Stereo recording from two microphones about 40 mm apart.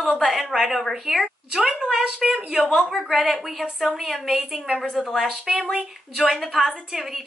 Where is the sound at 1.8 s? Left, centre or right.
Centre.